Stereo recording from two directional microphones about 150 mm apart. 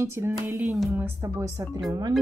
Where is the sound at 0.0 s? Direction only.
20° right (ahead or behind).